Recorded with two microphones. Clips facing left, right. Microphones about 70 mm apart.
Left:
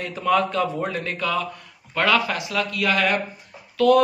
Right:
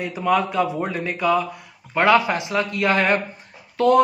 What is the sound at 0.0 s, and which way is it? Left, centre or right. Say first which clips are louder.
A man's voice: right 1 dB; centre.